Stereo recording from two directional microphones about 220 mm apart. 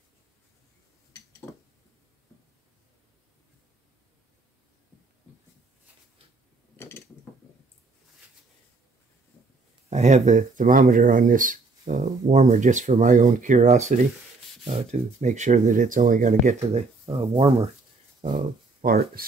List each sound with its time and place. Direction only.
9.8 s speech: 30° right (ahead or behind)
18.3 s speech: 40° right (ahead or behind)